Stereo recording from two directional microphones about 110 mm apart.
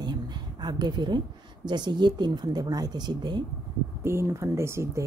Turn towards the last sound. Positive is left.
turn(degrees=-25)  # may be behind; listen again after turning